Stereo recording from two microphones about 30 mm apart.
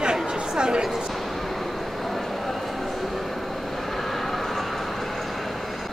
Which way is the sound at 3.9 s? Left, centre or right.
Centre.